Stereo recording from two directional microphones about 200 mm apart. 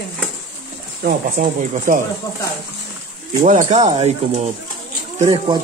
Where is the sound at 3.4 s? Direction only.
40° right (ahead or behind).